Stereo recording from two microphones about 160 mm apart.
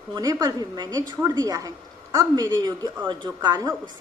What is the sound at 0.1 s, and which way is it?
A woman's voice, 25° right (ahead or behind).